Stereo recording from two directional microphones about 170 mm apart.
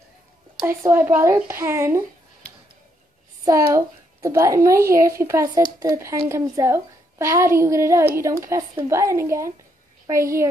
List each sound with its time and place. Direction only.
0.8 s a woman's voice: 10° right (ahead or behind)
3.4 s a child's voice: 20° right (ahead or behind)